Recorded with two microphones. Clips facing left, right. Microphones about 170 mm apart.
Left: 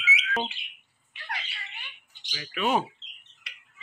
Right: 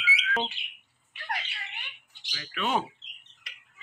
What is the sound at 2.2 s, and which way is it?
Speech, 15° left (ahead or behind).